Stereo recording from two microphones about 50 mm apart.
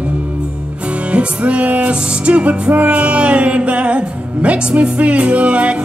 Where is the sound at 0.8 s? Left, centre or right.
Right.